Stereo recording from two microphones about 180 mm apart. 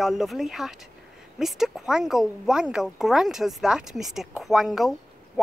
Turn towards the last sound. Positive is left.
turn(degrees=0)  # may be behind; listen again after turning